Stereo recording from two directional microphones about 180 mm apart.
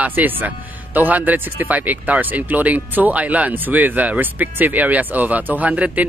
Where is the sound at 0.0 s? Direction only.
10° right (ahead or behind).